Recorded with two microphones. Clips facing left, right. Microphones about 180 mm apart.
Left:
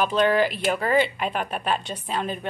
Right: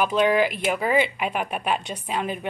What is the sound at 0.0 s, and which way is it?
Speech, 10° right (ahead or behind).